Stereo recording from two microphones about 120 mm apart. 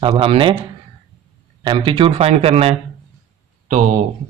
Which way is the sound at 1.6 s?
40° right (ahead or behind).